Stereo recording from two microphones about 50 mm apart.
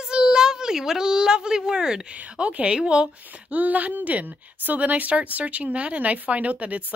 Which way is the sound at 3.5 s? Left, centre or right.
Right.